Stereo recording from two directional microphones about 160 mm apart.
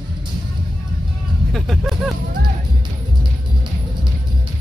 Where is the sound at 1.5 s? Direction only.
Centre (ahead or behind).